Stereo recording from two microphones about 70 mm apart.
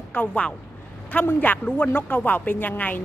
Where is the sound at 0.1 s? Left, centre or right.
Left.